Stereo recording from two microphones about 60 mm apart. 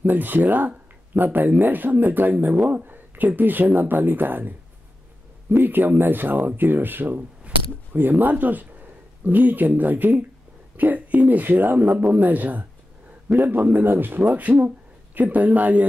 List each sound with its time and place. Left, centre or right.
0.0 s speech: right